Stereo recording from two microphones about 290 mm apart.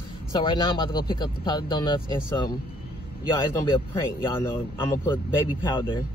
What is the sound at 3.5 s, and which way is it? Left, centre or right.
Speech, centre.